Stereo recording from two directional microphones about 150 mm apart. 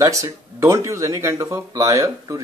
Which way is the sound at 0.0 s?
20° right (ahead or behind).